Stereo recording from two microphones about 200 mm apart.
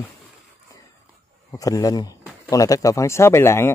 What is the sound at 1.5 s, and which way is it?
Speech, 15° left (ahead or behind).